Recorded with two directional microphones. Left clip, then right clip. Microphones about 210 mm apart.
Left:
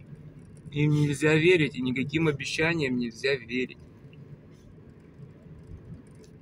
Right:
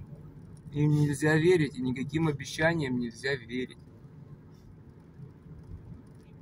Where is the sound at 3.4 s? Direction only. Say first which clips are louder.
Left 5 dB; 50° right (ahead or behind).